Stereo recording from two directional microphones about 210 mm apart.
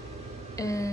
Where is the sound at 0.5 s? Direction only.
15° left (ahead or behind).